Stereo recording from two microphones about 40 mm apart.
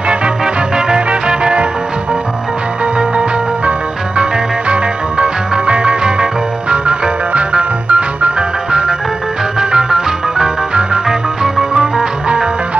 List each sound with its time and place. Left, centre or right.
0.7 s music: right
3.0 s music: right
9.6 s organ: centre
10.7 s music: right
11.1 s music: centre